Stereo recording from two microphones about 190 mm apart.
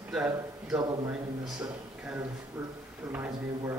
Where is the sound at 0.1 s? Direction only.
5° right (ahead or behind).